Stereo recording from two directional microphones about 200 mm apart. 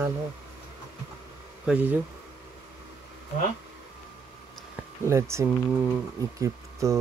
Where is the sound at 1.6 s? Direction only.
5° right (ahead or behind).